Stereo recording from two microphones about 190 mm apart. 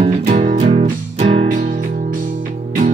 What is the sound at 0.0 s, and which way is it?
Music, 35° right (ahead or behind).